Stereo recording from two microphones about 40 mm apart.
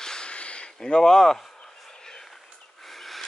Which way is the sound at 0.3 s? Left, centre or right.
Left.